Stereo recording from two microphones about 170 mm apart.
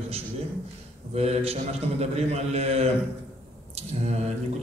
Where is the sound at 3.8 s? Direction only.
40° right (ahead or behind).